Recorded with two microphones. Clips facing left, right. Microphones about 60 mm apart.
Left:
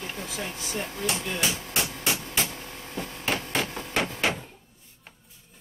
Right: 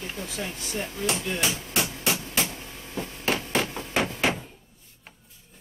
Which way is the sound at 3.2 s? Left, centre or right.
Centre.